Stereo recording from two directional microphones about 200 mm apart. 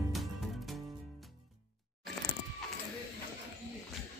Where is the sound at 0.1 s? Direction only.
Centre (ahead or behind).